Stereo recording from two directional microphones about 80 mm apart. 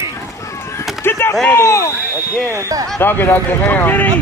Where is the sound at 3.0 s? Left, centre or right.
Left.